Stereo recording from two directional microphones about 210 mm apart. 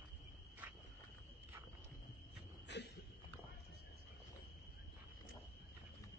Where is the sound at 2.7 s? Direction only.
55° left (ahead or behind).